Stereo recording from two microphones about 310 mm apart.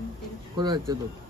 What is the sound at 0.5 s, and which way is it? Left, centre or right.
Speech, centre.